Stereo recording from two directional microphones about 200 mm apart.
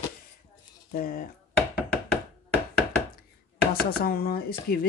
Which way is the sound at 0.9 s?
45° left (ahead or behind).